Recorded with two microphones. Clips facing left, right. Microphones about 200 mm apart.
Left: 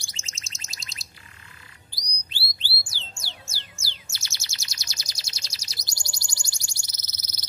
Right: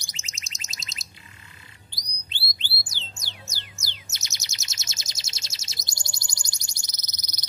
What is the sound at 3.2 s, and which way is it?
Music, 15° right (ahead or behind).